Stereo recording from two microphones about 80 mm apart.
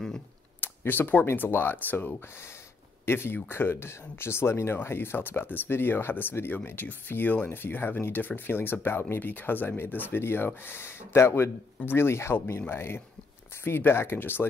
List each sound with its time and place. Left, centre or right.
0.8 s speech: left